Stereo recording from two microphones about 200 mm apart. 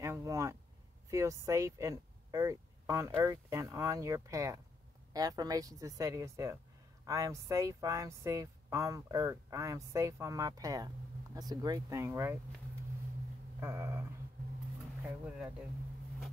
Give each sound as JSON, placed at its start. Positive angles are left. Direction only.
{"t": 0.0, "sound": "a sound", "side_deg": -15}
{"t": 1.1, "sound": "speech", "side_deg": -15}
{"t": 13.6, "sound": "speech", "side_deg": -15}
{"t": 15.0, "sound": "speech", "side_deg": -5}